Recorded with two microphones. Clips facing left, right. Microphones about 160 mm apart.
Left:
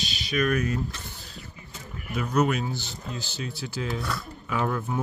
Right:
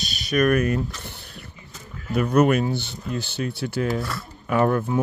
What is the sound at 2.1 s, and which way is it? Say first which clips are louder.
Speech: right 6 dB; 60° right (ahead or behind).